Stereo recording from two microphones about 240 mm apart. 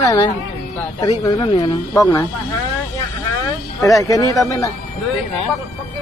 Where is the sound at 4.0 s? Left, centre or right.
Centre.